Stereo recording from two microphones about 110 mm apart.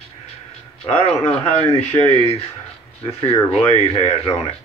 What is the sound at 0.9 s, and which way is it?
Speech, 70° left (ahead or behind).